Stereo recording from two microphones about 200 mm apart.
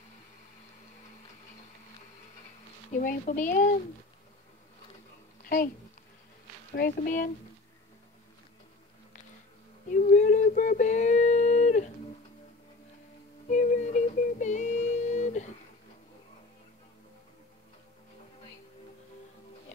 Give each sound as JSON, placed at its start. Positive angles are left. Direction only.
{"t": 2.9, "sound": "speech", "side_deg": 40}
{"t": 6.7, "sound": "speech", "side_deg": 45}
{"t": 9.8, "sound": "a sound", "side_deg": 40}
{"t": 13.5, "sound": "music", "side_deg": 40}